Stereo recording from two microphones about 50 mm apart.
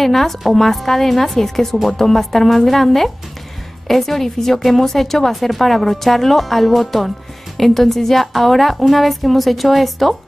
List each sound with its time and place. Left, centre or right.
0.0 s a woman's voice: centre